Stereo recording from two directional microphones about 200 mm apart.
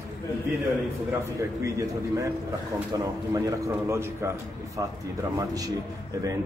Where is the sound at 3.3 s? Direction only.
15° right (ahead or behind).